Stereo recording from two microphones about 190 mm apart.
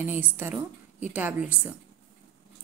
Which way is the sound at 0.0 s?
10° right (ahead or behind).